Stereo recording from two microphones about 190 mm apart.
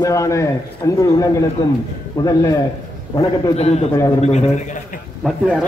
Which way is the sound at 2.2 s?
15° left (ahead or behind).